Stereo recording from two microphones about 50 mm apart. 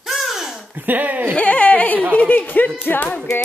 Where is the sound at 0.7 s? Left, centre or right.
Right.